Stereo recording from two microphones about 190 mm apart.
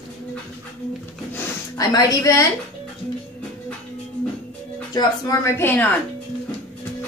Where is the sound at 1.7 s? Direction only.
20° left (ahead or behind).